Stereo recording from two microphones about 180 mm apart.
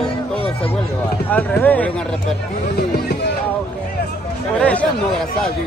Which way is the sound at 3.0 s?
60° left (ahead or behind).